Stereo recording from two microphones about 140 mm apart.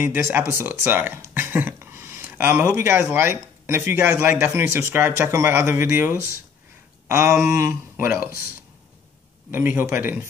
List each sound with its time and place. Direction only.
0.0 s speech: 15° right (ahead or behind)
9.5 s speech: 15° right (ahead or behind)